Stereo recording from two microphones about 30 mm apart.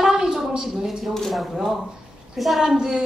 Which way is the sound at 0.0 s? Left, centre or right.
Centre.